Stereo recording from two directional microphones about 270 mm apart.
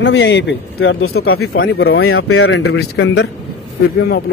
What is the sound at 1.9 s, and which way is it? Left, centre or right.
Speech, left.